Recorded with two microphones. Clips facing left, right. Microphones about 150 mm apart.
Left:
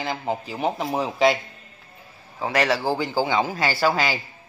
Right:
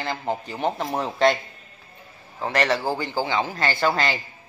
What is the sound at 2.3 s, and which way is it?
A man's voice, 5° left (ahead or behind).